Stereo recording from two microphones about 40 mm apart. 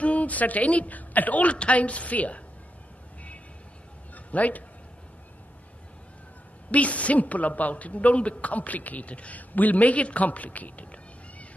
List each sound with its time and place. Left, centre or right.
0.0 s speech: left
4.1 s a sound: left
6.7 s speech: left
9.5 s speech: left